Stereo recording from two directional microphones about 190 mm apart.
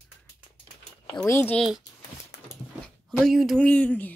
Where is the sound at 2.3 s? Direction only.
60° left (ahead or behind).